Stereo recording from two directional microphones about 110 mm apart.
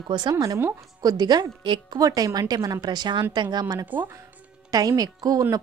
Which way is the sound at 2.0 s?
35° right (ahead or behind).